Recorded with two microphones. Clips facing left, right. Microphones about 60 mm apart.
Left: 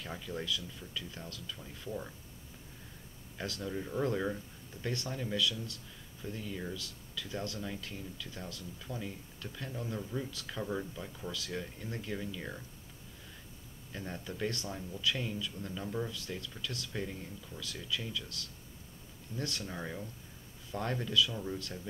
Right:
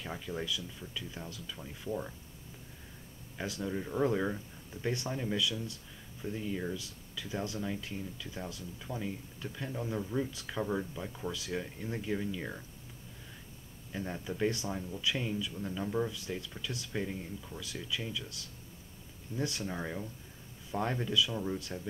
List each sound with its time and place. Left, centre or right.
0.0 s speech: centre
3.3 s speech: centre
13.9 s speech: centre